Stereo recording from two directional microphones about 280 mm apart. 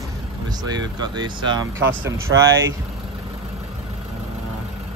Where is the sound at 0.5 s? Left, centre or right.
Centre.